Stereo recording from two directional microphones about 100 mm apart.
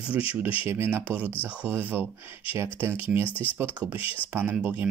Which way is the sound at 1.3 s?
20° left (ahead or behind).